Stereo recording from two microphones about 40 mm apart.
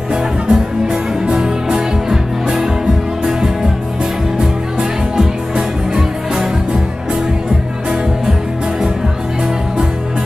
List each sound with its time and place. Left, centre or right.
0.1 s music: centre